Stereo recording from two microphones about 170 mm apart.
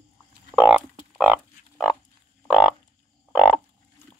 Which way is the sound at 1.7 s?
5° left (ahead or behind).